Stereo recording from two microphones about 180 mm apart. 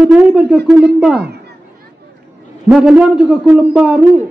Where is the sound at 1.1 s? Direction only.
65° right (ahead or behind).